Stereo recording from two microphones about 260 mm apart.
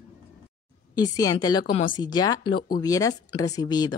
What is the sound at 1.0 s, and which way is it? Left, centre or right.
Speech, centre.